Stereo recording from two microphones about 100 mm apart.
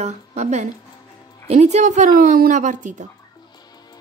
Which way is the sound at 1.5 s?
90° right.